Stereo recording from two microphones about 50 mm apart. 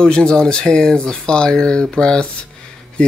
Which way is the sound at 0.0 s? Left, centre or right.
Centre.